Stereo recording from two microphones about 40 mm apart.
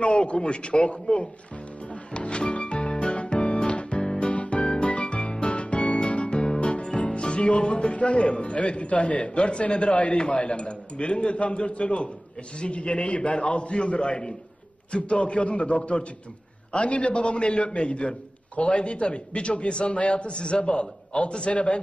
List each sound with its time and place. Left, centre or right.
0.0 s a man's voice: left
2.1 s music: left
4.3 s music: left
12.5 s a man's voice: left